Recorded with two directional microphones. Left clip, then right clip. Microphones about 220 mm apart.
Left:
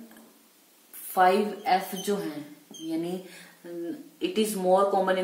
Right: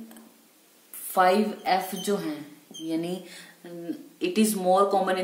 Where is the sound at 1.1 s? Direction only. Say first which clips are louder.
Even; 40° right (ahead or behind).